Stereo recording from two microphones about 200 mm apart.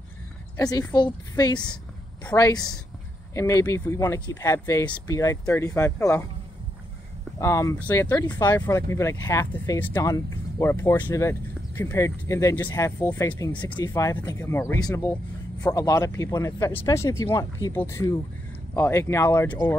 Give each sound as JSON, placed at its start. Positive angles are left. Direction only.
{"t": 0.6, "sound": "a woman's voice", "side_deg": 15}
{"t": 7.3, "sound": "speech", "side_deg": 15}